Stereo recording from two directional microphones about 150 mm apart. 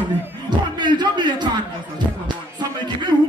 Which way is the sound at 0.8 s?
30° right (ahead or behind).